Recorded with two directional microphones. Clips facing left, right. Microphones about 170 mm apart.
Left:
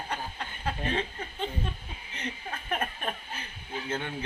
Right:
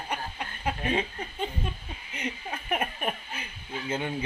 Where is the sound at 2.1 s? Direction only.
15° right (ahead or behind).